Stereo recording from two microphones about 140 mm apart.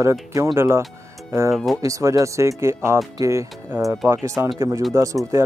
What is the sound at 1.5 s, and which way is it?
Speech, centre (ahead or behind).